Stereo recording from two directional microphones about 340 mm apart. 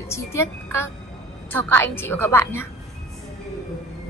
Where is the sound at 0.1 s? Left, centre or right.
Centre.